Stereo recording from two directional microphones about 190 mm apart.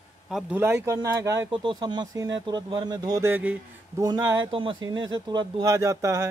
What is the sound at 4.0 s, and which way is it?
Speech, 20° right (ahead or behind).